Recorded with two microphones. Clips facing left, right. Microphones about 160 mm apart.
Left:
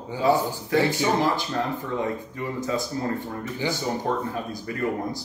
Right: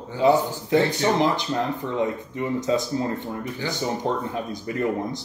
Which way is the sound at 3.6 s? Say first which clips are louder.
Left 4 dB; 15° left (ahead or behind).